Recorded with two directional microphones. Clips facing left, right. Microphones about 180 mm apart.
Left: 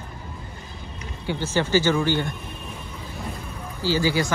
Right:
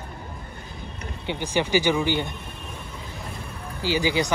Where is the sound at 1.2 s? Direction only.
15° right (ahead or behind).